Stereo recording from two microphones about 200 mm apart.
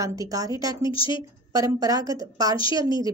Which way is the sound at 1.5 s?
20° right (ahead or behind).